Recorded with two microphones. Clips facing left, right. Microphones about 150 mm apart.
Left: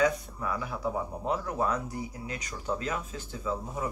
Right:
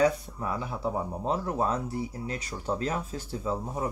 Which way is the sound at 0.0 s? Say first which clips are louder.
Right 2 dB; 25° right (ahead or behind).